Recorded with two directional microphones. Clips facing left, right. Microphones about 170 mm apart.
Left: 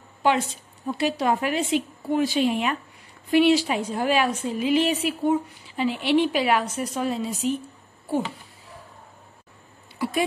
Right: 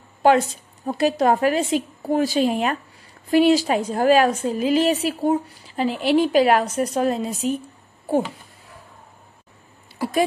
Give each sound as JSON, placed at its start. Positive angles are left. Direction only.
{"t": 0.2, "sound": "a woman's voice", "side_deg": -40}